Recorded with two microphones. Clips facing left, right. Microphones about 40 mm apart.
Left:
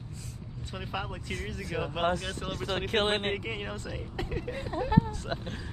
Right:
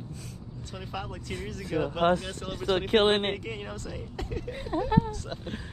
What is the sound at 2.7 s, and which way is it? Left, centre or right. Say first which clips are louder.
Speech: right 5 dB; right.